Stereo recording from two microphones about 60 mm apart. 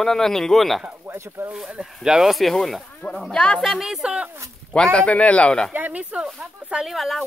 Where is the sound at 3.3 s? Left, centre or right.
Centre.